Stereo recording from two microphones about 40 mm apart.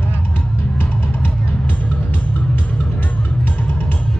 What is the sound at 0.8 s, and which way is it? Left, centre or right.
Music, left.